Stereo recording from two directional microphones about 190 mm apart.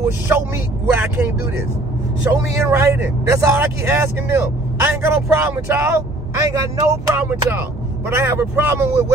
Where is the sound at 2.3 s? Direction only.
15° right (ahead or behind).